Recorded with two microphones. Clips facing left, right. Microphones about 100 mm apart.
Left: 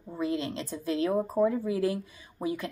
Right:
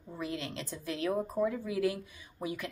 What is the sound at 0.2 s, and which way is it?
A woman's voice, 25° left (ahead or behind).